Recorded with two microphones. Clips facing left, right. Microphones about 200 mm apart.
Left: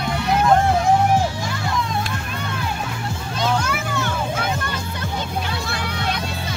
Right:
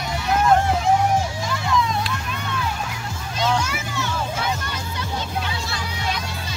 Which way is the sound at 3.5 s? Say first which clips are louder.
Left 2 dB; 55° left (ahead or behind).